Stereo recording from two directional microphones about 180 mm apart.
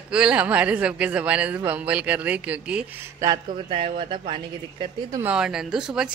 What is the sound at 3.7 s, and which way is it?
Speech, 35° right (ahead or behind).